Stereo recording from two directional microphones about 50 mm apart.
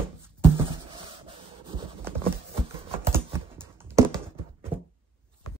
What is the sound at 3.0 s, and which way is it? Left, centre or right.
Typing, right.